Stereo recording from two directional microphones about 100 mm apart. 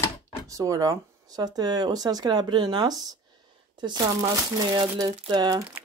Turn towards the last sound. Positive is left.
turn(degrees=-45)  # may be behind; listen again after turning